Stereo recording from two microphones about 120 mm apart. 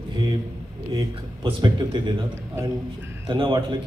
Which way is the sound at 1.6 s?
35° right (ahead or behind).